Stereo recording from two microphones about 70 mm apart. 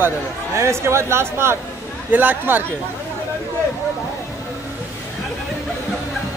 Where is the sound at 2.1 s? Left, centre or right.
Right.